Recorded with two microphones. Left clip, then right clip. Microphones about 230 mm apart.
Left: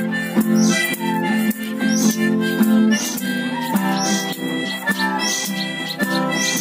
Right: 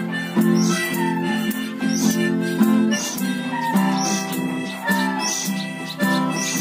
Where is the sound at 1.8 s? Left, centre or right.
Left.